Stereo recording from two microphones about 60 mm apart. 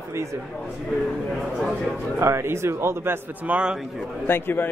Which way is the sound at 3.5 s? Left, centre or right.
Centre.